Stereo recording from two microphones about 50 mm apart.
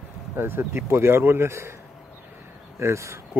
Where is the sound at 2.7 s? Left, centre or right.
Right.